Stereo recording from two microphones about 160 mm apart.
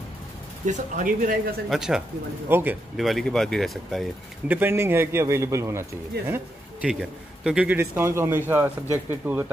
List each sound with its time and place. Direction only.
0.7 s speech: 55° right (ahead or behind)
1.7 s a man's voice: 5° right (ahead or behind)
3.0 s speech: centre (ahead or behind)
4.5 s a man's voice: 15° right (ahead or behind)